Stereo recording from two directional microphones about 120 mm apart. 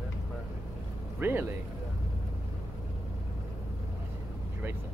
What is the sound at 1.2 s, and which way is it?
Speech, 20° right (ahead or behind).